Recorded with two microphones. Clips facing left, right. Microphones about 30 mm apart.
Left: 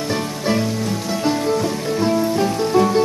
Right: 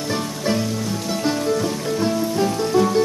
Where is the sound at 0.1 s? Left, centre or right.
Centre.